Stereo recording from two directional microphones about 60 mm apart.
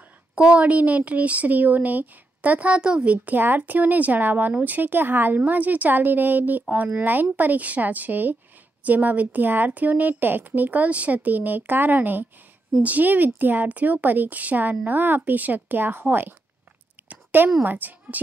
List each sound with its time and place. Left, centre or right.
0.4 s a woman's voice: centre; by 16.3 s right
17.1 s a sound: right
17.6 s speech: right